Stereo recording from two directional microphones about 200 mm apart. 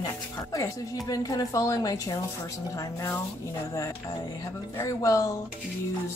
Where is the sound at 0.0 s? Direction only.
15° left (ahead or behind).